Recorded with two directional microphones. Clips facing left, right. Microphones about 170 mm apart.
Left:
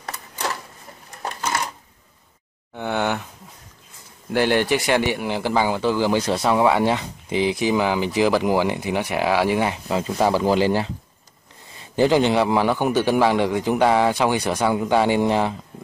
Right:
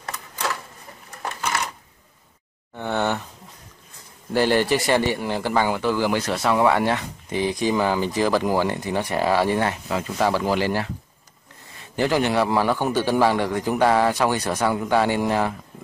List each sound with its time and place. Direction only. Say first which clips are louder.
2.7 s speech: left 1 dB; centre (ahead or behind)
4.3 s a man's voice: even; 5° right (ahead or behind)
5.2 s speech: left 1 dB; 10° left (ahead or behind)
7.5 s speech: left 1 dB; 5° left (ahead or behind)
9.8 s speech: left 2 dB; 20° left (ahead or behind)
11.9 s speech: left 4 dB; 25° left (ahead or behind)